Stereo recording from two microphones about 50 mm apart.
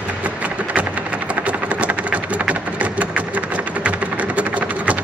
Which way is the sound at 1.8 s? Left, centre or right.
Right.